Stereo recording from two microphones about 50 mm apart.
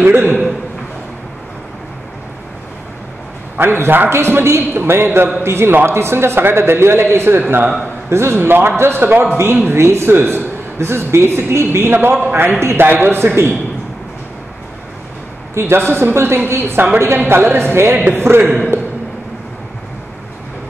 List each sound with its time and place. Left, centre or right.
0.0 s a man's voice: right
3.5 s a man's voice: right
8.1 s a man's voice: right
9.0 s a man's voice: right
9.8 s a man's voice: right
12.8 s a man's voice: right
15.5 s a man's voice: right
18.7 s a sound: right